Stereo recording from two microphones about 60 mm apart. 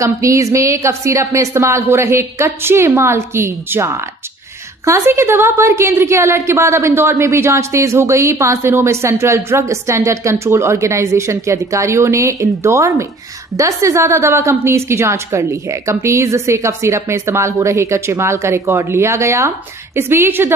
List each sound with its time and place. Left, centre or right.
0.0 s a woman's voice: right